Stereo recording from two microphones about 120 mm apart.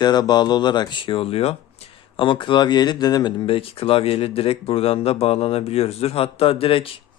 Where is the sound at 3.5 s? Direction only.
50° left (ahead or behind).